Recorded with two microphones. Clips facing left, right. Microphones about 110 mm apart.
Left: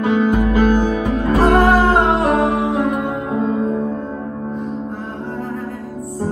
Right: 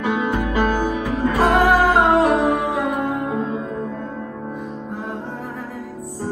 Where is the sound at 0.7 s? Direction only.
15° left (ahead or behind).